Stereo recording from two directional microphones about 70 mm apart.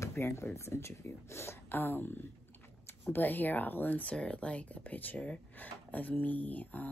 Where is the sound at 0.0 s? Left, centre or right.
Left.